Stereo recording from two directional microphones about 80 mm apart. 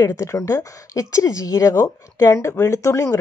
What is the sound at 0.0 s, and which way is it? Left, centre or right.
Speech, left.